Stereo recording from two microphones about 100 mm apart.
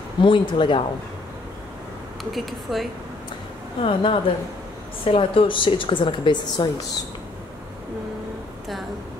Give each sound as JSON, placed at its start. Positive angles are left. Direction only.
{"t": 0.2, "sound": "speech", "side_deg": 55}
{"t": 2.3, "sound": "speech", "side_deg": 0}
{"t": 3.8, "sound": "a woman's voice", "side_deg": 70}